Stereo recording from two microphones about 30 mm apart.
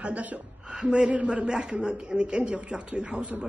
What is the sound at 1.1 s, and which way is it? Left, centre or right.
Speech, right.